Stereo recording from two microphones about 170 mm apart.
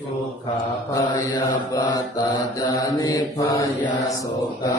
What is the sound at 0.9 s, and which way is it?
Mantra, 25° left (ahead or behind).